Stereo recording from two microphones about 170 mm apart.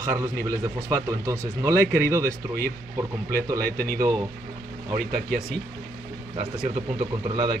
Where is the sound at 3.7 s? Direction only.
65° right (ahead or behind).